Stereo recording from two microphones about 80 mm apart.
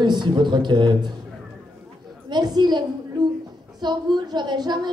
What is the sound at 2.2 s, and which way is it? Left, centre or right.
A woman's voice, right.